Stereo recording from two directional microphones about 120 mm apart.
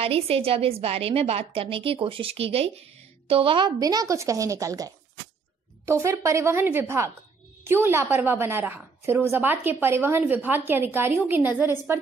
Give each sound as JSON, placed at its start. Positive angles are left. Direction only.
{"t": 0.0, "sound": "a woman's voice", "side_deg": -55}
{"t": 3.8, "sound": "a woman's voice", "side_deg": -30}